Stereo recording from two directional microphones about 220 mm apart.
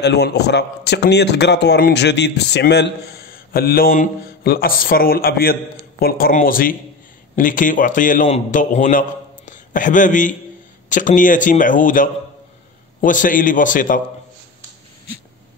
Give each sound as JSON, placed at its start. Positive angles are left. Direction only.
{"t": 0.0, "sound": "a man's voice", "side_deg": 50}